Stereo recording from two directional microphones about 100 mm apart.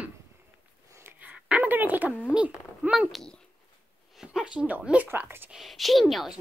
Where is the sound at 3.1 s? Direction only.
5° left (ahead or behind).